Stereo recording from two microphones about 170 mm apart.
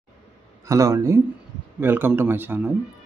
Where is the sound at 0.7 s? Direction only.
20° right (ahead or behind).